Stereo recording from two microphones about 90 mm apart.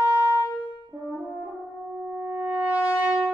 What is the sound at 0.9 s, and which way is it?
French horn, 15° right (ahead or behind).